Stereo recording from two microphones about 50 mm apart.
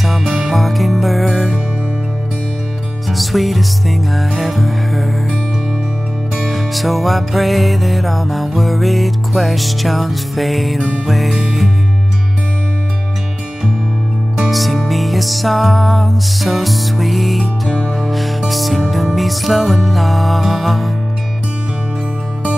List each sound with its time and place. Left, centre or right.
0.0 s music: centre
3.1 s music: centre
6.5 s music: centre
14.5 s music: centre
17.6 s music: centre
18.0 s music: centre